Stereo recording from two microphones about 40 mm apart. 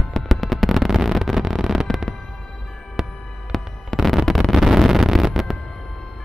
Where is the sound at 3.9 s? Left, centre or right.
Centre.